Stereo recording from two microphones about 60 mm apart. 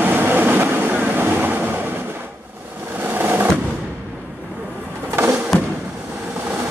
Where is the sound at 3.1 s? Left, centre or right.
Right.